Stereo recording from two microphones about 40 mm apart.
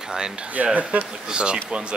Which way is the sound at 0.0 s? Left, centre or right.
Centre.